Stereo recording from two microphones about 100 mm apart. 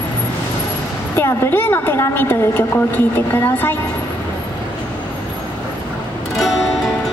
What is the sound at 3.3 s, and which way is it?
Speech, 20° left (ahead or behind).